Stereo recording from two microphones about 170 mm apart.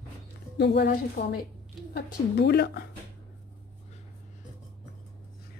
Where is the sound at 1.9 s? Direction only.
75° left (ahead or behind).